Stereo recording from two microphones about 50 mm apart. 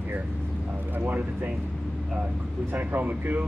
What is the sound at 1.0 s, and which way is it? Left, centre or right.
Speech, right.